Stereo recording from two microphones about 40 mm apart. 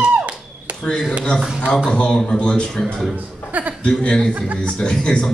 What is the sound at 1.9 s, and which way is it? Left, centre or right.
Speech, left.